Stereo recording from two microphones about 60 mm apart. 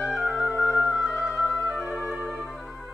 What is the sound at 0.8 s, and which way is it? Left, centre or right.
Music, centre.